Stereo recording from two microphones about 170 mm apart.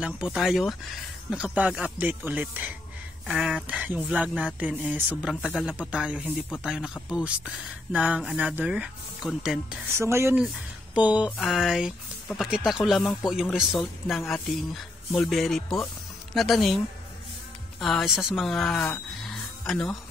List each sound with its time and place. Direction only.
0.0 s speech: 5° right (ahead or behind)
5.3 s speech: 5° left (ahead or behind)
9.9 s speech: 15° right (ahead or behind); by 20.0 s centre (ahead or behind)